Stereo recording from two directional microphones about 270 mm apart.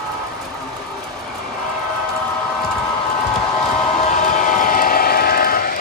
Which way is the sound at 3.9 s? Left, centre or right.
Left.